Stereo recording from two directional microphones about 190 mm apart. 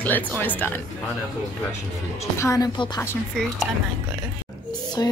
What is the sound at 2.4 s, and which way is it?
Speech, 20° left (ahead or behind).